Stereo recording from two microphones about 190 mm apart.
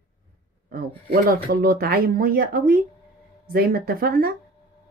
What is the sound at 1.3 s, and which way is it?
Speech, 50° right (ahead or behind).